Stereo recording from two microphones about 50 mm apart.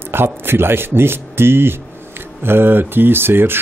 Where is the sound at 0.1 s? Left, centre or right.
Right.